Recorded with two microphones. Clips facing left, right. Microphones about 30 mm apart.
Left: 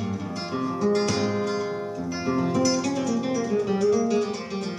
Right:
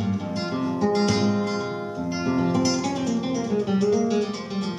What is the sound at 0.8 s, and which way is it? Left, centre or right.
Guitar, centre.